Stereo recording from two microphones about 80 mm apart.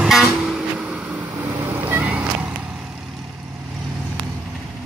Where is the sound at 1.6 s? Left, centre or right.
Right.